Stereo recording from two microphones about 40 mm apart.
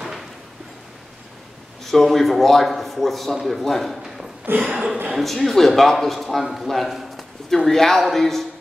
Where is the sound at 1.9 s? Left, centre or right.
Centre.